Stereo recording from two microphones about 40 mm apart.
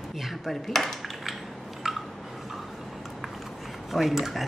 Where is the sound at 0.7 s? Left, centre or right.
Centre.